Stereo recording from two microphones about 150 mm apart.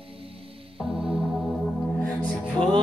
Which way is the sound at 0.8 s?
5° right (ahead or behind).